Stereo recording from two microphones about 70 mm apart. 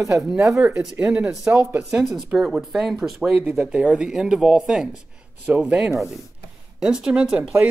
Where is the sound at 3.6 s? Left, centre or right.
Centre.